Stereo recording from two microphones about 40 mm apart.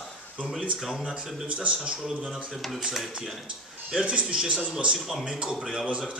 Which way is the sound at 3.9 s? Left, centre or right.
Right.